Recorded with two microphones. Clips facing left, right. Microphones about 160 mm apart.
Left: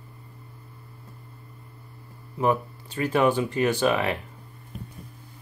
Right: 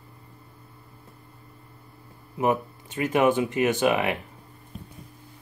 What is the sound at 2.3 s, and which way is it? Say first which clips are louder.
Speech: even; 20° right (ahead or behind).